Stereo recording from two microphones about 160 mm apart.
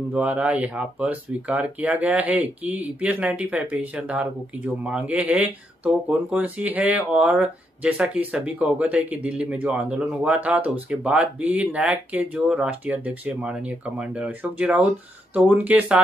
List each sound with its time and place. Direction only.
0.1 s speech: 10° right (ahead or behind)